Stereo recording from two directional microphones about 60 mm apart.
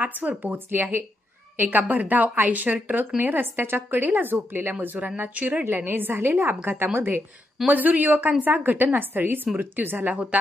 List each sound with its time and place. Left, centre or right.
0.0 s a woman's voice: right